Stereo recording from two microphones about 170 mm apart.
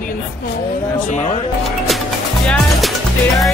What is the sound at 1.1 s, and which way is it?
Speech, 45° left (ahead or behind).